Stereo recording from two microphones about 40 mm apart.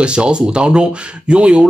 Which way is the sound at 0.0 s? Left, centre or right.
Right.